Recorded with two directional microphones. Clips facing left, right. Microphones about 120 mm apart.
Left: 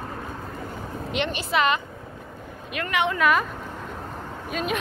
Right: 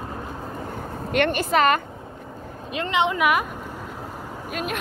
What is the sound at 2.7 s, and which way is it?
Speech, 25° right (ahead or behind).